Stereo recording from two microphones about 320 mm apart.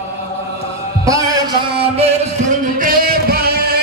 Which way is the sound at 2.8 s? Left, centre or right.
Right.